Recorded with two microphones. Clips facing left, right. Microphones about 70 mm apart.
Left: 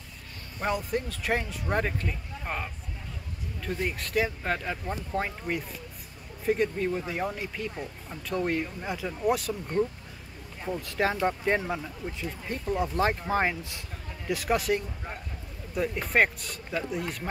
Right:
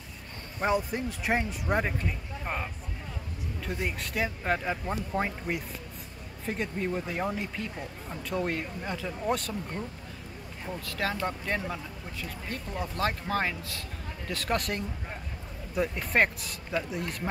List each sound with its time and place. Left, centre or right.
0.6 s speech: centre
10.9 s speech: left; by 17.3 s centre